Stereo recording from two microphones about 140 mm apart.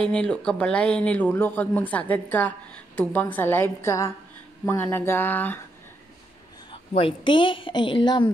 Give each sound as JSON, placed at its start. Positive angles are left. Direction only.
{"t": 0.0, "sound": "speech", "side_deg": 5}
{"t": 6.7, "sound": "a woman's voice", "side_deg": 40}